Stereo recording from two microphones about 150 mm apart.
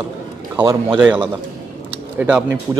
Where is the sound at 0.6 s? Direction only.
25° right (ahead or behind).